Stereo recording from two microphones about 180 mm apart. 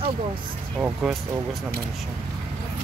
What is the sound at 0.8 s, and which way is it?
Speech, 5° right (ahead or behind).